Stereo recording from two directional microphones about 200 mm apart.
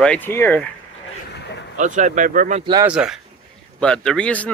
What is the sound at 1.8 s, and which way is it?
Speech, 40° right (ahead or behind).